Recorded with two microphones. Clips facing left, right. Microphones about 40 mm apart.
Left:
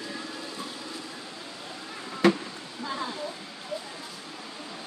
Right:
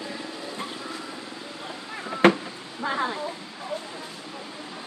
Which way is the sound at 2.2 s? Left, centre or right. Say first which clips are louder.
Right 4 dB; right.